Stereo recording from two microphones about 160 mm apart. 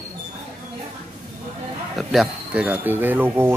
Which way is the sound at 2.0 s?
Centre (ahead or behind).